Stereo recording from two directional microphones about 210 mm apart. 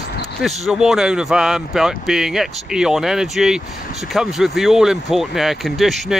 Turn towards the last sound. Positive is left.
turn(degrees=0)  # may be behind; listen again after turning